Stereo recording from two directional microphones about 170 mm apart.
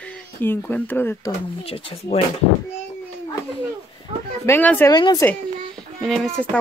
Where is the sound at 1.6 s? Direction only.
35° left (ahead or behind).